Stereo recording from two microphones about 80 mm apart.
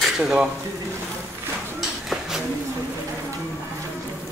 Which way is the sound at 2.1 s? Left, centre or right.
Centre.